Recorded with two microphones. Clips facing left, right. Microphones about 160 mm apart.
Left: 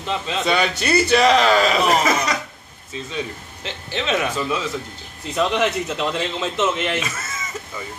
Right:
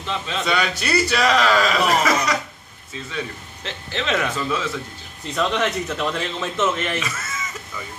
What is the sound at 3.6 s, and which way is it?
Speech, 5° left (ahead or behind).